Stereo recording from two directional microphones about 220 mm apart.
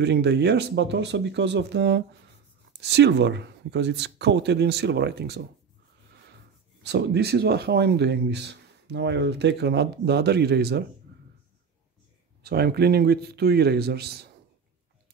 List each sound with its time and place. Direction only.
0.0 s speech: 50° right (ahead or behind)
6.8 s speech: 50° right (ahead or behind)
12.4 s speech: 45° right (ahead or behind)